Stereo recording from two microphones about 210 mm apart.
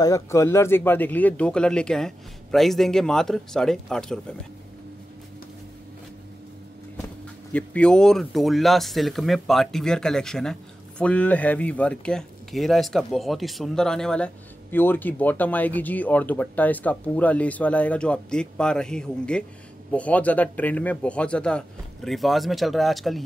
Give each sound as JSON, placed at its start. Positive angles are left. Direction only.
{"t": 0.0, "sound": "speech", "side_deg": 15}
{"t": 7.5, "sound": "speech", "side_deg": 5}